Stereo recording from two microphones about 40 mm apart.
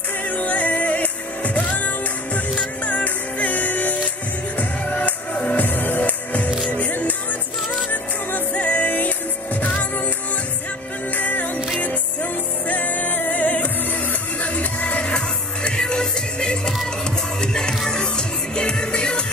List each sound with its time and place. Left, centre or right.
0.4 s music: left
2.9 s music: left
5.6 s music: left
8.5 s music: left
11.1 s music: left
15.1 s music: left